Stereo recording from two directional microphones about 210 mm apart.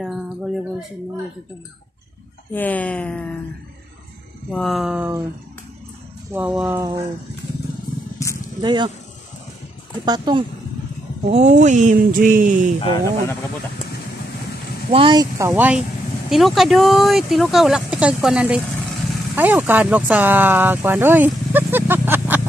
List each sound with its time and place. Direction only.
0.0 s a sound: centre (ahead or behind)
2.5 s speech: 10° left (ahead or behind)
4.5 s speech: centre (ahead or behind)
6.3 s speech: 5° right (ahead or behind)
8.2 s vehicle: 15° left (ahead or behind)
8.5 s speech: 20° right (ahead or behind)
10.0 s speech: 20° right (ahead or behind)
11.2 s speech: 35° right (ahead or behind)
12.8 s speech: 15° left (ahead or behind)
14.9 s speech: 25° right (ahead or behind)